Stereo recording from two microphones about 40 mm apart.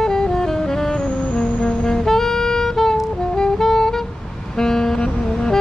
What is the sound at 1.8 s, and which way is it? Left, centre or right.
Saxophone, centre.